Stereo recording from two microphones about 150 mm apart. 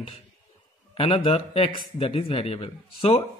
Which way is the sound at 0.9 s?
40° left (ahead or behind).